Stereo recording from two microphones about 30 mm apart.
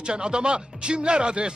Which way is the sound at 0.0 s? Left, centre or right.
Right.